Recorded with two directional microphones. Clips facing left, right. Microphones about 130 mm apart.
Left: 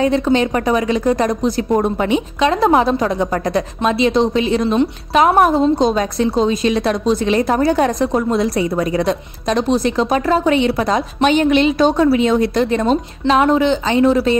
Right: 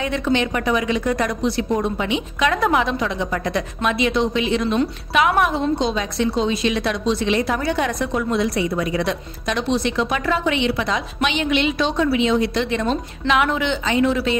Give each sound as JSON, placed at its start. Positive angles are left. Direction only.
{"t": 0.0, "sound": "a woman's voice", "side_deg": 35}
{"t": 2.4, "sound": "a woman's voice", "side_deg": 30}